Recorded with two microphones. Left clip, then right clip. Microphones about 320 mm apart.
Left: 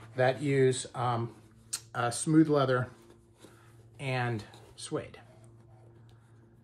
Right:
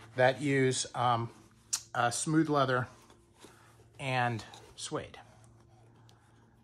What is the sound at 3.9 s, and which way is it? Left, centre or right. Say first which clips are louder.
Speech: right 2 dB; centre.